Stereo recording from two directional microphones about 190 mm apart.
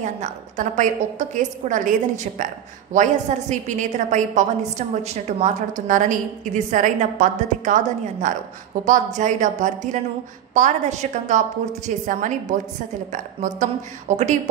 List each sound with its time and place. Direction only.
0.0 s a woman's voice: 40° right (ahead or behind)